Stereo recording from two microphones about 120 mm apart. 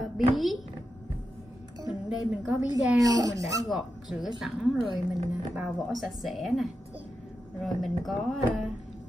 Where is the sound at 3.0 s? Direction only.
30° right (ahead or behind).